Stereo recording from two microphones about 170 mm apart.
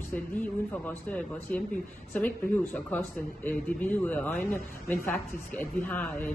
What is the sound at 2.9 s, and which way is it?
A woman's voice, 10° left (ahead or behind).